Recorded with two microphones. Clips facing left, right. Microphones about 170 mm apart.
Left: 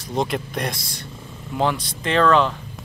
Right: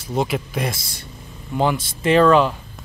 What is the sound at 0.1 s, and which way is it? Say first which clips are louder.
Speech: right 2 dB; 5° right (ahead or behind).